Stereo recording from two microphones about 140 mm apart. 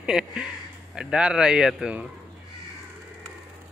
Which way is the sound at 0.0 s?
5° right (ahead or behind).